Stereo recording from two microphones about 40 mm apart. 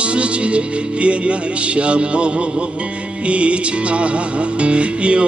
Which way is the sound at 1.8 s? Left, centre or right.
Right.